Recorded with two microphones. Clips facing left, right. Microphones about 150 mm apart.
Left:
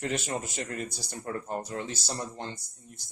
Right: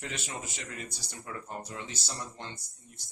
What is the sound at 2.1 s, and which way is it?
Speech, 35° left (ahead or behind).